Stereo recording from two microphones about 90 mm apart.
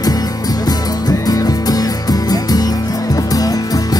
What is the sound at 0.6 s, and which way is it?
Music, 40° left (ahead or behind).